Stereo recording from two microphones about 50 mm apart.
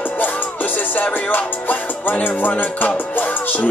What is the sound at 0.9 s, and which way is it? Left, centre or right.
Music, left.